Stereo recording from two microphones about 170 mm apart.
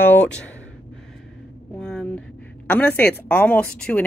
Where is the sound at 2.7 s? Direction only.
10° left (ahead or behind).